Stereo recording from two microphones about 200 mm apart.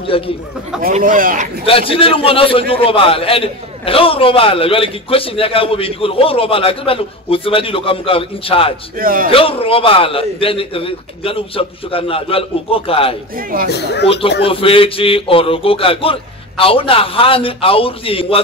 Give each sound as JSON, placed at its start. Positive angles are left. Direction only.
{"t": 0.1, "sound": "a man's voice", "side_deg": 25}
{"t": 0.8, "sound": "speech", "side_deg": -45}
{"t": 1.7, "sound": "a man's voice", "side_deg": 25}
{"t": 8.9, "sound": "speech", "side_deg": -45}
{"t": 9.3, "sound": "a man's voice", "side_deg": 25}
{"t": 13.7, "sound": "speech", "side_deg": 55}
{"t": 14.0, "sound": "a man's voice", "side_deg": 30}